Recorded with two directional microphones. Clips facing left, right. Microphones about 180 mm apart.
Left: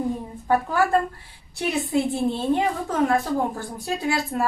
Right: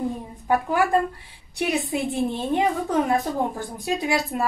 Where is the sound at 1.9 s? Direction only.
20° right (ahead or behind).